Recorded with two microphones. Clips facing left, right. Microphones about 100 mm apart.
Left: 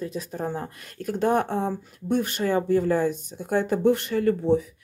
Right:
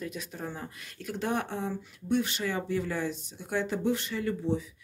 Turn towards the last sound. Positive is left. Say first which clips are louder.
# left 9 dB
turn(degrees=55)  # may be behind; listen again after turning